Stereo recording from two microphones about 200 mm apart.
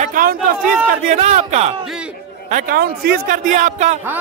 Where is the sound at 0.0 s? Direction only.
45° right (ahead or behind).